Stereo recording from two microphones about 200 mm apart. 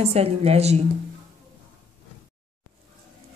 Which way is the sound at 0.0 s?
30° right (ahead or behind).